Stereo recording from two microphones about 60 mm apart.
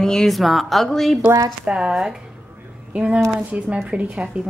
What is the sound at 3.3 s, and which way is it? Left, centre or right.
Speech, centre.